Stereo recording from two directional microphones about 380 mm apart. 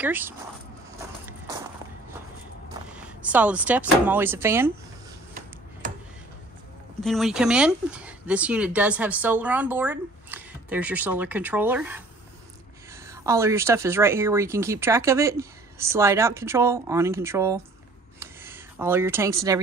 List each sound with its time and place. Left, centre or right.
0.0 s speech: centre
2.9 s speech: centre
5.8 s tick-tock: right
7.0 s speech: centre
13.0 s speech: centre
18.2 s a sound: centre